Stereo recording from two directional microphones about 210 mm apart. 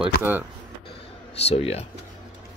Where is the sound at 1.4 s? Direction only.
30° left (ahead or behind).